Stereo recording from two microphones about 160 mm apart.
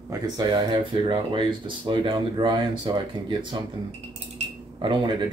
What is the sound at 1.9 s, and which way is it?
Speech, 30° right (ahead or behind).